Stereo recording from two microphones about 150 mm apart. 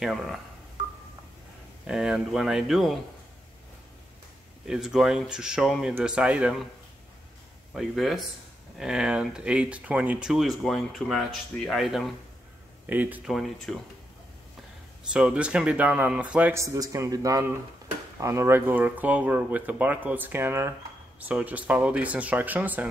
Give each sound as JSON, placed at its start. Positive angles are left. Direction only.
{"t": 0.0, "sound": "speech", "side_deg": 0}
{"t": 1.9, "sound": "speech", "side_deg": -5}
{"t": 4.6, "sound": "speech", "side_deg": -5}
{"t": 7.7, "sound": "speech", "side_deg": -5}
{"t": 13.3, "sound": "speech", "side_deg": 0}
{"t": 15.1, "sound": "speech", "side_deg": -5}
{"t": 16.5, "sound": "speech", "side_deg": -20}